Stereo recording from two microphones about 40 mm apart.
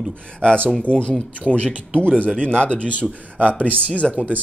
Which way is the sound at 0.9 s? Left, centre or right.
Left.